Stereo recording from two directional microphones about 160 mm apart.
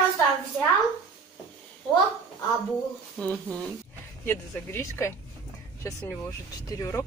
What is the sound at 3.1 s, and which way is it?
Speech, 5° left (ahead or behind).